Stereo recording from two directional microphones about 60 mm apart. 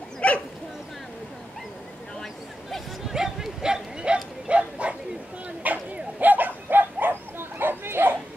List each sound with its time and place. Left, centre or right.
0.2 s dog: left
2.7 s a sound: centre
5.6 s bow-wow: right